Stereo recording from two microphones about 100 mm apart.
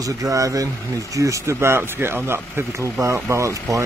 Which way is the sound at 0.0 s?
35° right (ahead or behind).